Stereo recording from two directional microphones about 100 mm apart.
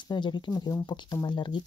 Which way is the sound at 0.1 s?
50° left (ahead or behind).